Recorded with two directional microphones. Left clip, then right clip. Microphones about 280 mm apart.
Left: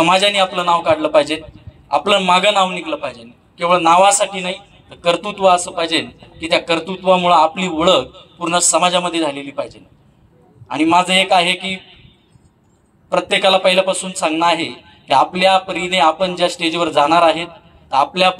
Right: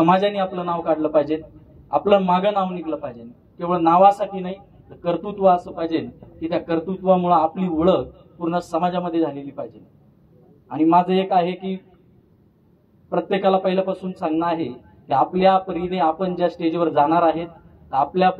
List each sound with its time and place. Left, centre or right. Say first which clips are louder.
0.0 s a man's voice: left 5 dB; centre
13.1 s a man's voice: left 5 dB; centre